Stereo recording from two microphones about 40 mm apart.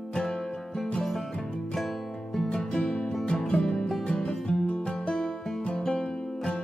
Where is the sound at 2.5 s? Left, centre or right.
Centre.